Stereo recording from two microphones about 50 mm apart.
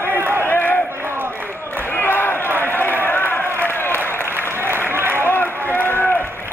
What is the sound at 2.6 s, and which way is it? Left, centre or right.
Run, left.